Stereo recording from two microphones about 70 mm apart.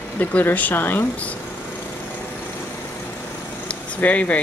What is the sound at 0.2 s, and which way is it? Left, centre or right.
Speech, left.